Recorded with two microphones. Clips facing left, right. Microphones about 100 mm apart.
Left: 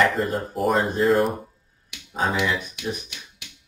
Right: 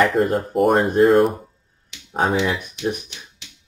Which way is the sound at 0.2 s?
55° right (ahead or behind).